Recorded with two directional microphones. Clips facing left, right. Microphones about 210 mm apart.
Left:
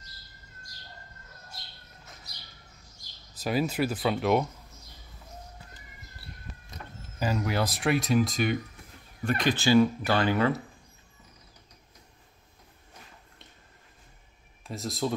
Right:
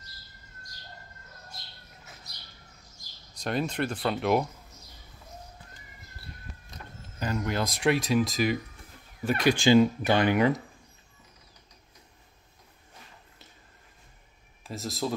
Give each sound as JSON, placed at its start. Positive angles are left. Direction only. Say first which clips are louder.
{"t": 3.3, "sound": "speech", "louder": "left 2 dB", "side_deg": 5}
{"t": 7.2, "sound": "speech", "louder": "left 1 dB", "side_deg": 5}
{"t": 14.6, "sound": "speech", "louder": "left 1 dB", "side_deg": 0}